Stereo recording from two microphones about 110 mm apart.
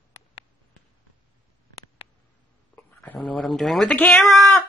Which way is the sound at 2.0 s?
65° left (ahead or behind).